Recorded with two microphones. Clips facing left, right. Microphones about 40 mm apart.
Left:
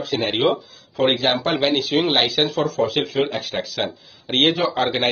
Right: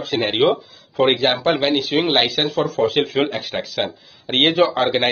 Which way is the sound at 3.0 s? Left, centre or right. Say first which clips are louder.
Right 3 dB; right.